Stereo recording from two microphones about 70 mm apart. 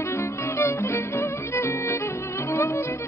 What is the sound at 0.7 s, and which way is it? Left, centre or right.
Music, left.